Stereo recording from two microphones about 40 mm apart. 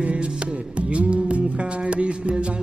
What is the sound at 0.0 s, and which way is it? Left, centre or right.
Music, right.